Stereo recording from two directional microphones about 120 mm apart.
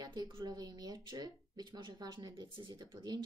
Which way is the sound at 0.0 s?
35° right (ahead or behind).